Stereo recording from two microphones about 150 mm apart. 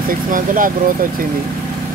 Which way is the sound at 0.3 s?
65° right (ahead or behind).